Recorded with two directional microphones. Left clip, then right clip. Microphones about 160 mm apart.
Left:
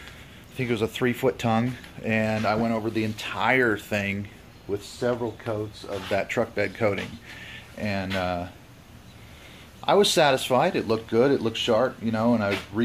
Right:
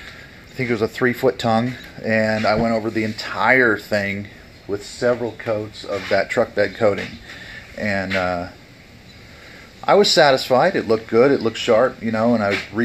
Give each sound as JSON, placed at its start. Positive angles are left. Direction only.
{"t": 0.6, "sound": "speech", "side_deg": 10}
{"t": 10.1, "sound": "speech", "side_deg": 10}